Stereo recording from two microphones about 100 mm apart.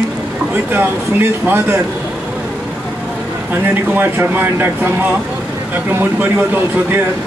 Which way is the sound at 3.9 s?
20° right (ahead or behind).